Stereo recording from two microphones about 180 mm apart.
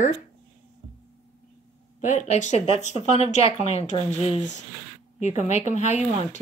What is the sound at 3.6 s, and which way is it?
Speech, 40° left (ahead or behind).